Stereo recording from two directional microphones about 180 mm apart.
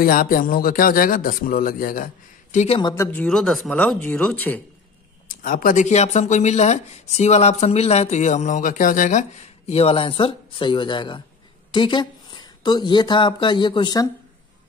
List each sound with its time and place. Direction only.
0.0 s a man's voice: 50° left (ahead or behind)
2.5 s speech: 35° left (ahead or behind)
2.8 s speech: 15° left (ahead or behind)
5.3 s speech: 50° left (ahead or behind); by 14.0 s 25° left (ahead or behind)